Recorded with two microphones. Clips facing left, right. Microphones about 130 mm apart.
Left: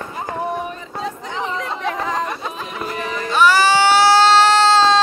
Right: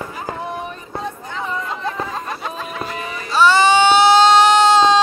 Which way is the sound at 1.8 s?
90° left.